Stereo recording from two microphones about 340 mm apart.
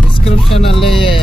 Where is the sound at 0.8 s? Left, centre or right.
Centre.